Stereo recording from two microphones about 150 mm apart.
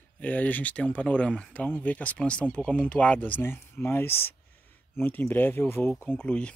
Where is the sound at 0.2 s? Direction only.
10° left (ahead or behind).